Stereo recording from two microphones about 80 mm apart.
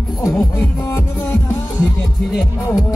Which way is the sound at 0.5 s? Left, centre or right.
Left.